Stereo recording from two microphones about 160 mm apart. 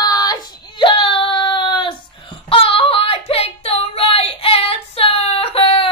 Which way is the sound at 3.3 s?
40° left (ahead or behind).